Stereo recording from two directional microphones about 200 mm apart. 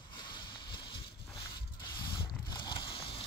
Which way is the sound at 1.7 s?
25° left (ahead or behind).